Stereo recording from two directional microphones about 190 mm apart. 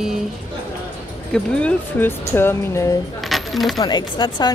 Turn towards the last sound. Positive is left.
turn(degrees=25)  # may be behind; listen again after turning